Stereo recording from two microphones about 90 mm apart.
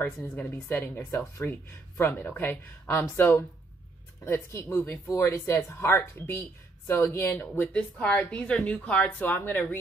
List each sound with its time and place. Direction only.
0.0 s speech: 20° left (ahead or behind)
7.6 s a woman's voice: 10° left (ahead or behind)